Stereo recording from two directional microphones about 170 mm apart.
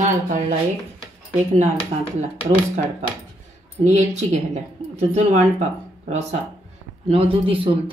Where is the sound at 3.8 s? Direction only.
45° right (ahead or behind).